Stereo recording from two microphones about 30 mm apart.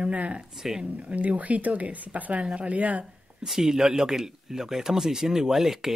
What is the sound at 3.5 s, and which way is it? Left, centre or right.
Speech, centre.